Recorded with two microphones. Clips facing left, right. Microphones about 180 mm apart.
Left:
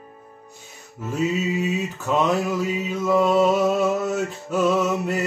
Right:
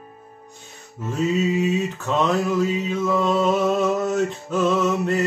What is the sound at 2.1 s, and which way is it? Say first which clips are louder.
Mantra: even; 10° left (ahead or behind).